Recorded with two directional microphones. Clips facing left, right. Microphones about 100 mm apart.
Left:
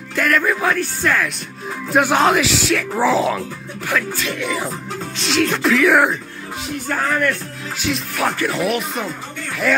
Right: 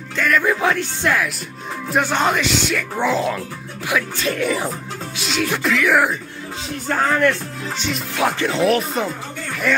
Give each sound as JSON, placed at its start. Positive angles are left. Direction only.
{"t": 0.1, "sound": "speech", "side_deg": 5}
{"t": 0.5, "sound": "speech", "side_deg": -20}
{"t": 2.0, "sound": "speech", "side_deg": 5}
{"t": 4.2, "sound": "speech", "side_deg": -40}
{"t": 5.1, "sound": "speech", "side_deg": -5}
{"t": 6.9, "sound": "speech", "side_deg": -20}
{"t": 9.7, "sound": "speech", "side_deg": 5}